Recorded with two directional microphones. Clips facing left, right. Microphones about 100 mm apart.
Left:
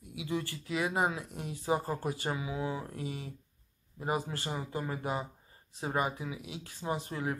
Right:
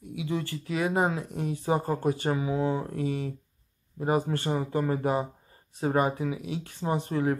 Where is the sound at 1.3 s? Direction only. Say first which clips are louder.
Right 9 dB; 45° right (ahead or behind).